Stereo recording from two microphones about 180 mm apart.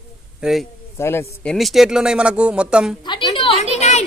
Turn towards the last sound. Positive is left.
turn(degrees=40)  # may be behind; listen again after turning